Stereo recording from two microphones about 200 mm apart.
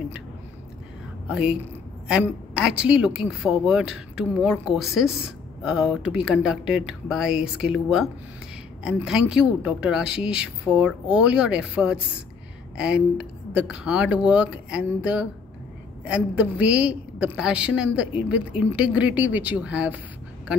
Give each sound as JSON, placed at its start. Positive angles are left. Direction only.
{"t": 1.3, "sound": "a woman's voice", "side_deg": -5}